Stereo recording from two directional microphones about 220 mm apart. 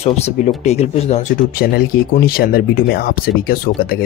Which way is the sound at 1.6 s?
40° left (ahead or behind).